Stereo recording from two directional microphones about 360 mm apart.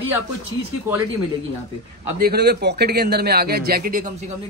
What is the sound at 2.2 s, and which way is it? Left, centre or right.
A man's voice, right.